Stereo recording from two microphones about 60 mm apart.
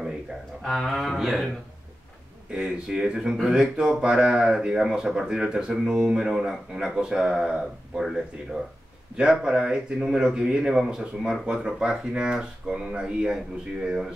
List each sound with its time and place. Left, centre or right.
0.7 s speech: centre
2.5 s speech: centre